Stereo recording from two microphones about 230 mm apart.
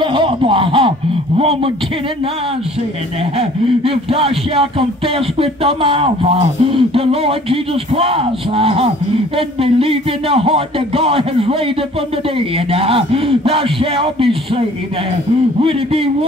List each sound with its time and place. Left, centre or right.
0.0 s a sound: right
1.4 s speech: right
3.3 s speech: right
15.6 s speech: right